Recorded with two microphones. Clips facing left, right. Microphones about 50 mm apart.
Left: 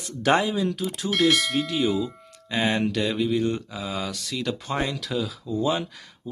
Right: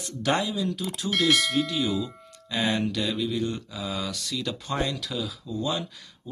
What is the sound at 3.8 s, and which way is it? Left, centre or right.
Speech, left.